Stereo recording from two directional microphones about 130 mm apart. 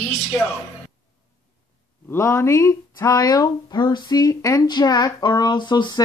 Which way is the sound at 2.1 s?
25° left (ahead or behind).